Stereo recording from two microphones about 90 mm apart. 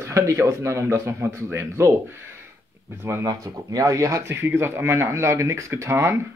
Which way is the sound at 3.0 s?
30° right (ahead or behind).